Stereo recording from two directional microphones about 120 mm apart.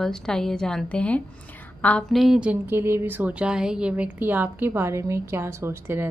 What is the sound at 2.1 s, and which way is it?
A woman's voice, centre (ahead or behind).